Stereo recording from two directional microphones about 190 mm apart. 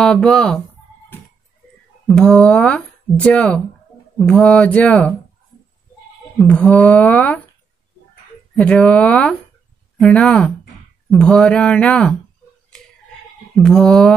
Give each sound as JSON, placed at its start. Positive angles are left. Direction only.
{"t": 0.0, "sound": "speech", "side_deg": 5}
{"t": 2.0, "sound": "speech", "side_deg": 5}
{"t": 6.3, "sound": "speech", "side_deg": 5}
{"t": 8.5, "sound": "speech", "side_deg": 5}
{"t": 13.6, "sound": "speech", "side_deg": 0}